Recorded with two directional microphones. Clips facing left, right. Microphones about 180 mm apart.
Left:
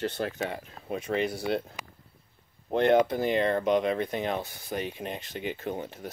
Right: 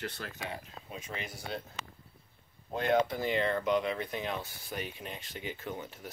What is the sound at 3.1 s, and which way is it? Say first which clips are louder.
Speech: left 5 dB; 45° left (ahead or behind).